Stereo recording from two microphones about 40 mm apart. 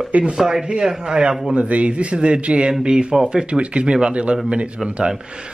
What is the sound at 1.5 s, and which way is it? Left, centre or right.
A man's voice, right.